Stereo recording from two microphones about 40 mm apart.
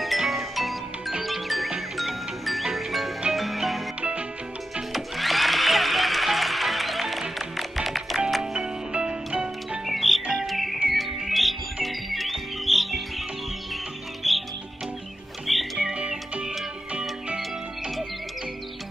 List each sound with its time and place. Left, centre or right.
0.2 s music: centre
4.9 s music: centre
8.5 s music: right
9.8 s music: centre
14.2 s music: centre
15.4 s music: centre
15.8 s music: centre